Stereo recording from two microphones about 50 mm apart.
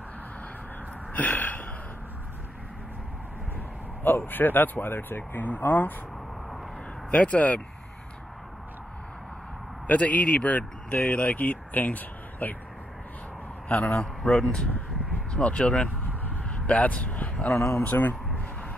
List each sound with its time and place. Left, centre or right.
1.1 s a sound: left
4.3 s speech: left
7.1 s speech: left
9.8 s speech: left
13.8 s a man's voice: left
14.3 s speech: centre
15.3 s speech: left
17.6 s speech: left
17.8 s speech: left
18.3 s a sound: left